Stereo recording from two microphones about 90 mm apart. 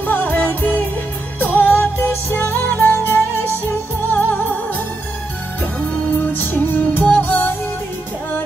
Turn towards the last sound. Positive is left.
turn(degrees=20)  # may be behind; listen again after turning